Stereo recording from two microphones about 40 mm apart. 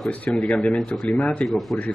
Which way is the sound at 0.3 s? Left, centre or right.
Left.